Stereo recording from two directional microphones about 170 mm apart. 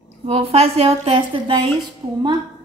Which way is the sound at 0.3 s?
35° right (ahead or behind).